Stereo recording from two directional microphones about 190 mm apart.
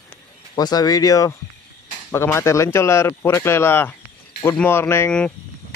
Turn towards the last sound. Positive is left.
turn(degrees=5)  # may be behind; listen again after turning